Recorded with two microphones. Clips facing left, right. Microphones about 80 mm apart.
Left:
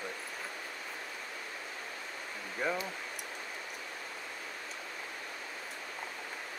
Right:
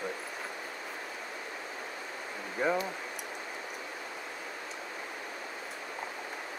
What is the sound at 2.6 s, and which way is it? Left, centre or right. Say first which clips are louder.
Speech: right 4 dB; centre.